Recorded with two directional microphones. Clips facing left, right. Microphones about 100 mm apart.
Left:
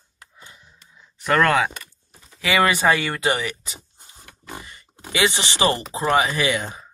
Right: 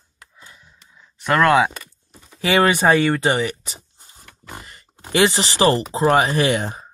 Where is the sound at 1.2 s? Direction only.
10° right (ahead or behind).